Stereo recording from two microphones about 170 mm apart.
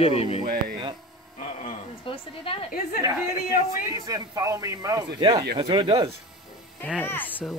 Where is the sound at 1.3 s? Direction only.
40° left (ahead or behind).